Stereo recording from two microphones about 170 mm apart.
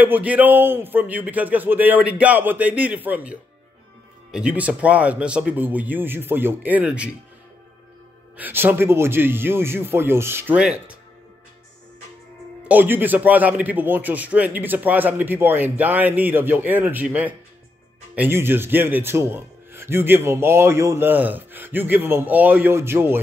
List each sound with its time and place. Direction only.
0.0 s a man's voice: 10° right (ahead or behind)
8.4 s a man's voice: 10° right (ahead or behind)
12.6 s a man's voice: 10° right (ahead or behind)